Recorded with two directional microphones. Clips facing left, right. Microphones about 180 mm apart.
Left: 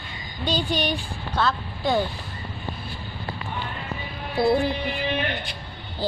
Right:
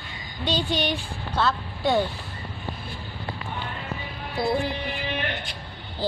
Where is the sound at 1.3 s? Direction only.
5° right (ahead or behind).